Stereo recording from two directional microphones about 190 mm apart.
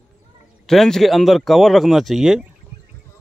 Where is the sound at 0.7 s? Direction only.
Centre (ahead or behind).